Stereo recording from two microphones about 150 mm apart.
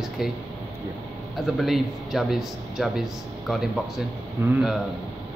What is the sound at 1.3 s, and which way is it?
A man's voice, centre (ahead or behind).